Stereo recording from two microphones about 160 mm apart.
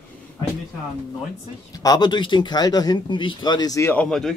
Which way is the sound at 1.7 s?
25° left (ahead or behind).